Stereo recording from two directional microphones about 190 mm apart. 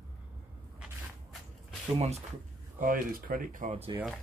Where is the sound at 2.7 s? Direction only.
45° right (ahead or behind).